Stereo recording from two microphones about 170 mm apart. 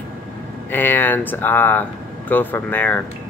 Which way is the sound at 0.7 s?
10° left (ahead or behind).